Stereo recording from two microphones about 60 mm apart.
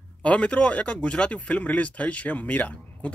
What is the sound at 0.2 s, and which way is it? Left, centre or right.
Speech, centre.